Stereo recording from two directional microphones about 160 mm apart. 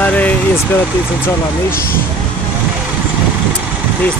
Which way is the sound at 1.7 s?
65° left (ahead or behind).